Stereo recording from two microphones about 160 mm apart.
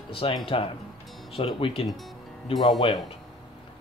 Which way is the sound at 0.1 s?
35° left (ahead or behind).